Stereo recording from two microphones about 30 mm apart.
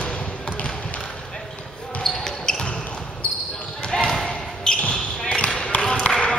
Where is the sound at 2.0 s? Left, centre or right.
Centre.